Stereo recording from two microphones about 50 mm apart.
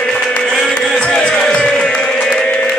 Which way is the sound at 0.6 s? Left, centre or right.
Centre.